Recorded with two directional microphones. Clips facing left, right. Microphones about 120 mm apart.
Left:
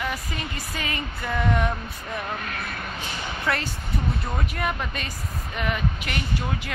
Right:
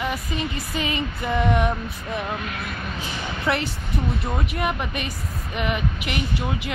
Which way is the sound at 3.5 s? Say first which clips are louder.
Right 3 dB; 20° right (ahead or behind).